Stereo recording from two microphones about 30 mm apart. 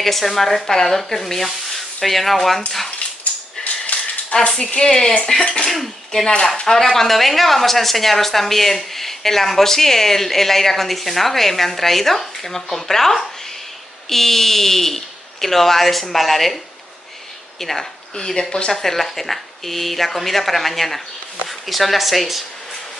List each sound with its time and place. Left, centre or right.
0.0 s speech: centre
3.6 s a sound: left
4.3 s speech: left
4.7 s speech: centre
5.7 s speech: centre
6.5 s speech: left
6.8 s speech: centre
17.6 s speech: centre
18.1 s speech: left
18.7 s speech: centre